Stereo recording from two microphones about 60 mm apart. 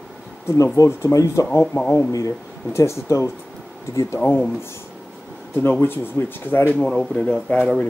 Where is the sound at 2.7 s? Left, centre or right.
Left.